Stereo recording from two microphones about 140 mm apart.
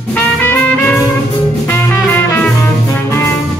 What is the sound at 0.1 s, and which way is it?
Music, 15° left (ahead or behind).